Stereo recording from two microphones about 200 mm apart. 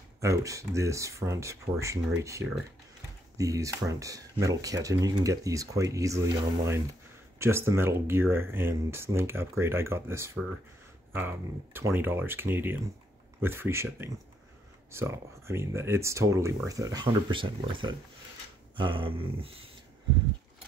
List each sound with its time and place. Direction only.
0.2 s speech: 15° right (ahead or behind)
2.4 s speech: 5° right (ahead or behind)
3.3 s speech: 15° right (ahead or behind)
18.8 s dog: 25° right (ahead or behind)